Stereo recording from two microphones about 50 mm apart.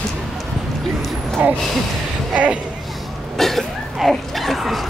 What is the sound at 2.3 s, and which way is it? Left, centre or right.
Speech, right.